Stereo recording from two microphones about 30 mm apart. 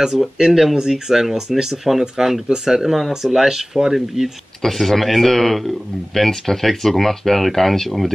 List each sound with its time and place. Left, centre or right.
0.0 s speech: centre
4.6 s speech: centre